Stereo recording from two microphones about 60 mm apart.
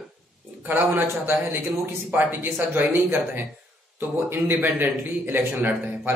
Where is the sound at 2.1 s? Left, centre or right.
Right.